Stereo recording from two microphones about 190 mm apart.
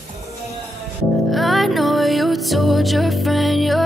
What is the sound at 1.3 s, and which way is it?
Music, centre (ahead or behind).